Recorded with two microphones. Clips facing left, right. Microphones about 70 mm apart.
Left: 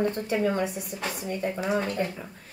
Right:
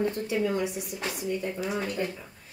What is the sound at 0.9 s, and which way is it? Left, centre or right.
Speech, left.